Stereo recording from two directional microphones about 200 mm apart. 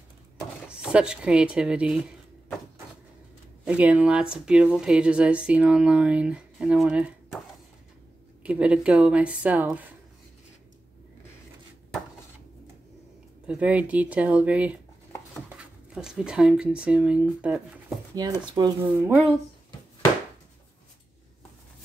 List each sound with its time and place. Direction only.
0.7 s speech: 5° right (ahead or behind)
3.6 s speech: 5° right (ahead or behind)
8.5 s a woman's voice: 5° right (ahead or behind)
13.5 s a woman's voice: 5° right (ahead or behind)
18.4 s speech: 20° right (ahead or behind)
18.9 s a woman's voice: 10° right (ahead or behind)